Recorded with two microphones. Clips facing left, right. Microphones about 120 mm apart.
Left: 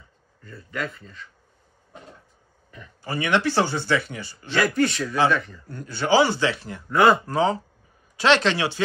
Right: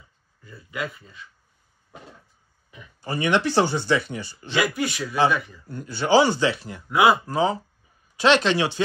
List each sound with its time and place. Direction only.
0.4 s speech: 10° right (ahead or behind)
3.0 s speech: 20° right (ahead or behind)
4.6 s a man's voice: 5° right (ahead or behind)